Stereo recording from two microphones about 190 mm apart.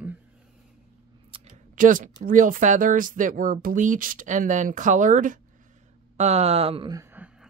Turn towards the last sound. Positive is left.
turn(degrees=-10)  # may be behind; listen again after turning